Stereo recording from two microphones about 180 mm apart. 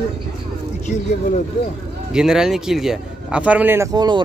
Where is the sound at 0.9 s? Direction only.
40° left (ahead or behind).